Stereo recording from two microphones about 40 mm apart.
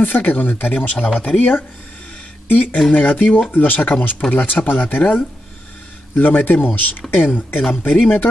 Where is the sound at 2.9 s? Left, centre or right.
Left.